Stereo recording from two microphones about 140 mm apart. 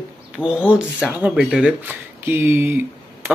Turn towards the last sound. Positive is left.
turn(degrees=-15)  # may be behind; listen again after turning